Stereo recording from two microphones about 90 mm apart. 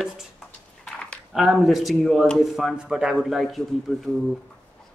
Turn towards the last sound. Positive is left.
turn(degrees=0)  # may be behind; listen again after turning